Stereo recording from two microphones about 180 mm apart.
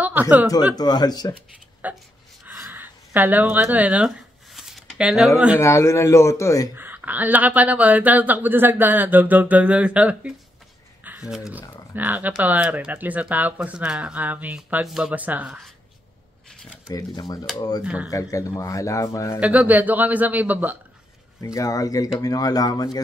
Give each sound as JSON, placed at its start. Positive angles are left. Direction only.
{"t": 0.0, "sound": "chuckle", "side_deg": -10}
{"t": 0.7, "sound": "speech", "side_deg": 20}
{"t": 1.8, "sound": "speech", "side_deg": -10}
{"t": 2.4, "sound": "a sound", "side_deg": -10}
{"t": 5.6, "sound": "a man's voice", "side_deg": 15}
{"t": 6.7, "sound": "speech", "side_deg": -10}
{"t": 16.9, "sound": "speech", "side_deg": 20}
{"t": 17.8, "sound": "speech", "side_deg": -5}
{"t": 18.1, "sound": "a man's voice", "side_deg": 20}
{"t": 19.4, "sound": "speech", "side_deg": -10}
{"t": 21.5, "sound": "speech", "side_deg": 20}